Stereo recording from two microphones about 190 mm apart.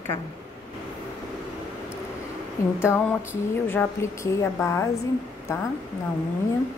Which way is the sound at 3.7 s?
15° left (ahead or behind).